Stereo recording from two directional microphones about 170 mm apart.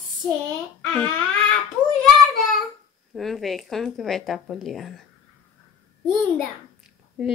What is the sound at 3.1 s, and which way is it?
Speech, centre (ahead or behind).